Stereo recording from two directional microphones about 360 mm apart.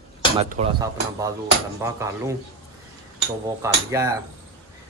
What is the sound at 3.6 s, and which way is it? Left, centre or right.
Speech, centre.